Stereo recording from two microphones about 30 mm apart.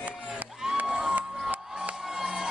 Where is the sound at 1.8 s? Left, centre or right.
Right.